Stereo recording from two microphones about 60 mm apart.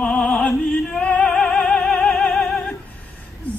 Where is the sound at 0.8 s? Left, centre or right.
Centre.